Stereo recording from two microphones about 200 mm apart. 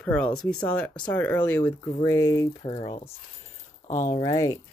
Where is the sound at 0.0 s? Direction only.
5° left (ahead or behind).